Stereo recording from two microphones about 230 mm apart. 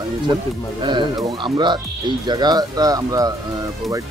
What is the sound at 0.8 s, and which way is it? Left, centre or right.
Speech, centre.